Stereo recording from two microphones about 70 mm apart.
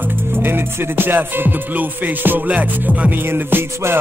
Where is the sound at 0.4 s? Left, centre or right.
Right.